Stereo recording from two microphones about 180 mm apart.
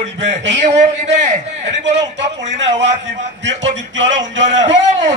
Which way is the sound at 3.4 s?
90° right.